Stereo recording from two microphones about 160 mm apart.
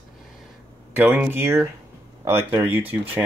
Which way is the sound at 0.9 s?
10° right (ahead or behind).